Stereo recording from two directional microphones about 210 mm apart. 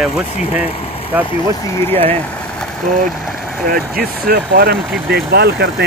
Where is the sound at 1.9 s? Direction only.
30° right (ahead or behind).